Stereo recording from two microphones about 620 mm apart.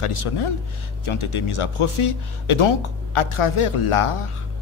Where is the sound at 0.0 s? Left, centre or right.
Left.